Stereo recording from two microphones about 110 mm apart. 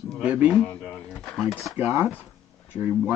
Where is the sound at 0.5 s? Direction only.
10° left (ahead or behind).